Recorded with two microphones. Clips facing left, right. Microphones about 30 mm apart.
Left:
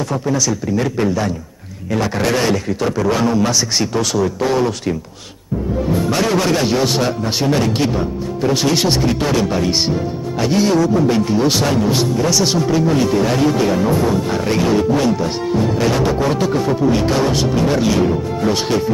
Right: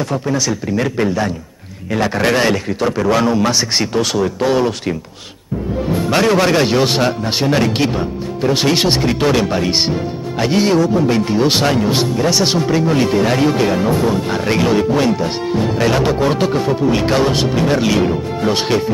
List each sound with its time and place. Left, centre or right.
0.3 s a man's voice: right
5.9 s a man's voice: right